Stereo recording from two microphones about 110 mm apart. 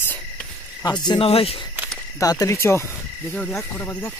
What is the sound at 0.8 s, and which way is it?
Speech, 40° left (ahead or behind).